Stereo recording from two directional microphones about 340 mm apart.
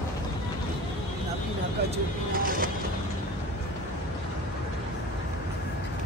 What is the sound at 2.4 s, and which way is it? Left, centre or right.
Music, right.